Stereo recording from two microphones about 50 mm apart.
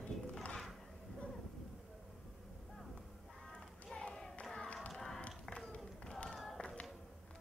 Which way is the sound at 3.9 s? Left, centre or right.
Centre.